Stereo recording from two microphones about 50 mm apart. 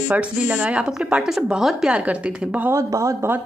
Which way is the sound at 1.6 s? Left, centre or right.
Centre.